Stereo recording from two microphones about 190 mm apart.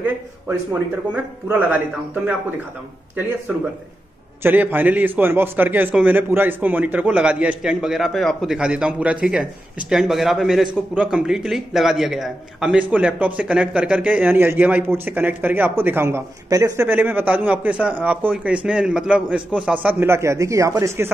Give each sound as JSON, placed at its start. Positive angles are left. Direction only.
{"t": 1.1, "sound": "a man's voice", "side_deg": -10}
{"t": 4.4, "sound": "a man's voice", "side_deg": -10}